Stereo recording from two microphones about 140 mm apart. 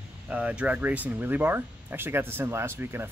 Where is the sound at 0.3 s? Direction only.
10° right (ahead or behind).